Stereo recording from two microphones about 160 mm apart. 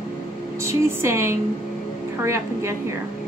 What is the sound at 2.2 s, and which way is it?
Speech, 15° right (ahead or behind).